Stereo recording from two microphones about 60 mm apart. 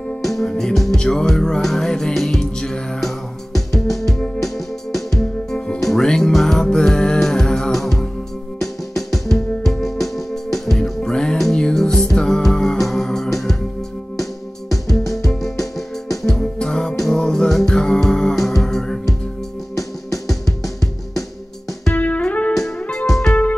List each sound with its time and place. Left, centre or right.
0.2 s music: centre
14.7 s music: centre
21.9 s music: left
22.8 s music: centre